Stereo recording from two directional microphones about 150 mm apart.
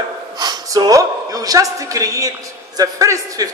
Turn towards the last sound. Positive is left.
turn(degrees=-25)  # may be behind; listen again after turning